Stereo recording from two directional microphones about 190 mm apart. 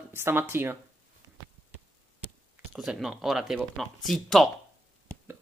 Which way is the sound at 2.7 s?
Centre (ahead or behind).